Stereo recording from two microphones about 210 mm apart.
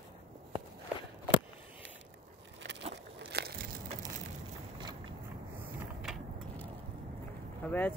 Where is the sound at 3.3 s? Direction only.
50° right (ahead or behind).